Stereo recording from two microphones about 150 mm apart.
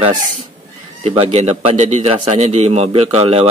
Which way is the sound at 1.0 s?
45° right (ahead or behind).